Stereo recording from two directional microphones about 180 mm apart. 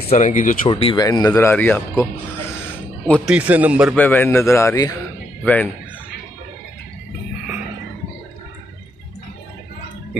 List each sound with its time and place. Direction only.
0.1 s speech: 45° left (ahead or behind)
0.7 s speech: 30° left (ahead or behind)
1.0 s a man's voice: 20° left (ahead or behind)
3.3 s a man's voice: 10° right (ahead or behind)
3.9 s a man's voice: 10° left (ahead or behind)